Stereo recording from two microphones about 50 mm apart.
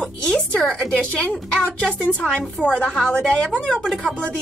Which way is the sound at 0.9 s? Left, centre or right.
Centre.